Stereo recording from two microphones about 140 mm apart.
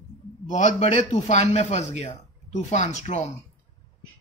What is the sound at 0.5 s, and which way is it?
Speech, 55° left (ahead or behind).